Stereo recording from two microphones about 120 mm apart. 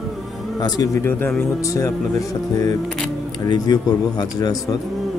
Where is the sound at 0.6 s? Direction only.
35° left (ahead or behind).